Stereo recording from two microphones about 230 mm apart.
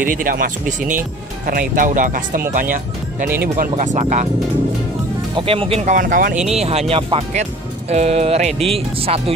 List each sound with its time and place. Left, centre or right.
0.0 s speech: right
5.3 s speech: right
6.3 s speech: centre
6.6 s speech: right